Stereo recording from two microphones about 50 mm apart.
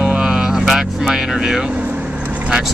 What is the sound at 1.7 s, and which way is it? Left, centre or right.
Vehicle, right.